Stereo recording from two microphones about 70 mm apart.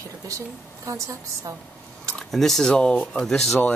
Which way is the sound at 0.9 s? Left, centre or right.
Right.